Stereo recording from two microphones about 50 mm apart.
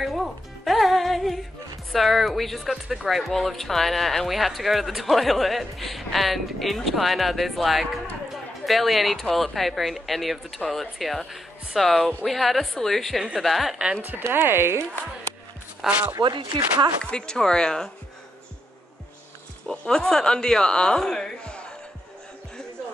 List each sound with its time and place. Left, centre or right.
0.0 s music: centre
1.9 s speech: centre
14.2 s speech: right
15.8 s speech: centre
17.0 s speech: centre
19.7 s speech: centre